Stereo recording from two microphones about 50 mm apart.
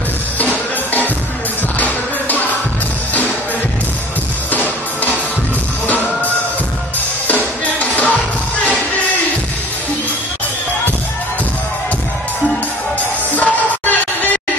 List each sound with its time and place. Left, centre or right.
0.4 s music: left
5.9 s music: left
13.3 s music: left